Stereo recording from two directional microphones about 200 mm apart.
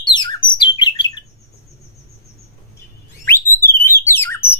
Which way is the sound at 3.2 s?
10° left (ahead or behind).